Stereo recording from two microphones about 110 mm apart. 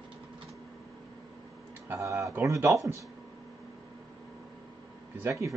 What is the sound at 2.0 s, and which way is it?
Speech, 30° right (ahead or behind).